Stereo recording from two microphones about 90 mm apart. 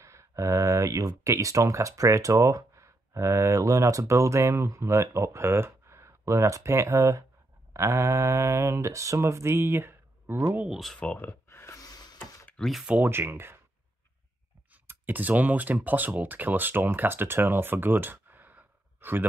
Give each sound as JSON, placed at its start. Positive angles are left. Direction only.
{"t": 0.0, "sound": "speech", "side_deg": -35}
{"t": 11.0, "sound": "speech", "side_deg": 15}
{"t": 11.4, "sound": "a sound", "side_deg": 30}
{"t": 11.8, "sound": "a sound", "side_deg": 45}
{"t": 12.5, "sound": "speech", "side_deg": 0}
{"t": 12.8, "sound": "speech", "side_deg": -15}
{"t": 13.1, "sound": "speech", "side_deg": -25}
{"t": 14.9, "sound": "speech", "side_deg": -20}